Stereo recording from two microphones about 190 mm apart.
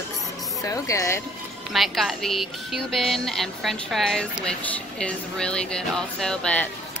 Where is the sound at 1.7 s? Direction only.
Centre (ahead or behind).